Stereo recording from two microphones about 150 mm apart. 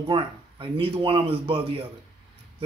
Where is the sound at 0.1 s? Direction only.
35° right (ahead or behind).